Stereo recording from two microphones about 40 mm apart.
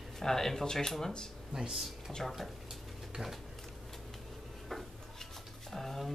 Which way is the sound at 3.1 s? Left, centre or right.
Centre.